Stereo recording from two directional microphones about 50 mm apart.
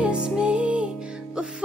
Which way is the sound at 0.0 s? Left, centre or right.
Right.